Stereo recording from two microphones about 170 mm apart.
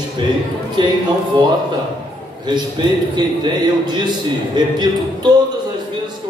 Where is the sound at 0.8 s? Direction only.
30° right (ahead or behind).